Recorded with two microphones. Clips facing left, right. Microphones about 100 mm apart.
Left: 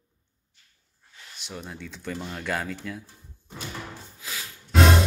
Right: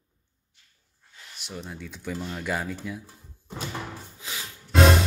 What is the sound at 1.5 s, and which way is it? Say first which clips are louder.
Speech: even; centre (ahead or behind).